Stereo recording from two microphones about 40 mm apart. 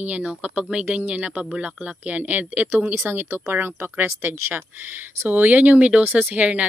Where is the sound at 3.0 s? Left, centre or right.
Right.